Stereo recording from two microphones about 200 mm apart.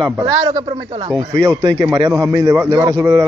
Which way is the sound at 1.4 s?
20° right (ahead or behind).